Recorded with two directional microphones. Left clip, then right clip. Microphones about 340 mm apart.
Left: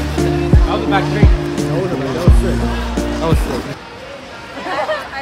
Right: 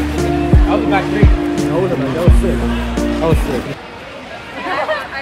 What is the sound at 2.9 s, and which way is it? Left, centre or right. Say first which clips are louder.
Music: right 3 dB; centre.